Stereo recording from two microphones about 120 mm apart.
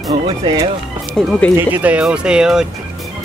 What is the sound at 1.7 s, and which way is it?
Speech, 10° right (ahead or behind).